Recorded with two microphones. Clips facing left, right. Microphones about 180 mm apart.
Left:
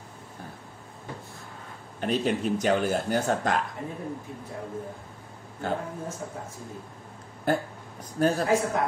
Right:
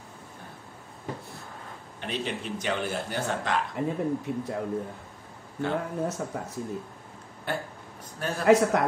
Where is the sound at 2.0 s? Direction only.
40° left (ahead or behind).